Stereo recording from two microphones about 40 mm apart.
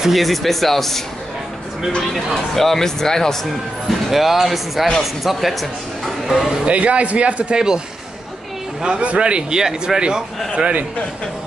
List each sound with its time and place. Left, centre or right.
0.1 s speech: centre
2.3 s speech: centre
4.1 s speech: centre
6.6 s speech: right
7.5 s speech: centre
9.0 s speech: right